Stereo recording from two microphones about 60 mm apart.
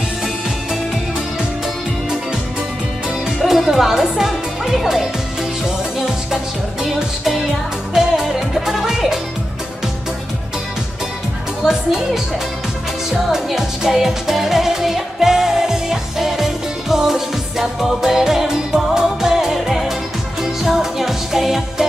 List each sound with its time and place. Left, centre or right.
3.3 s music: centre
6.8 s music: centre
11.6 s speech: centre
13.3 s music: centre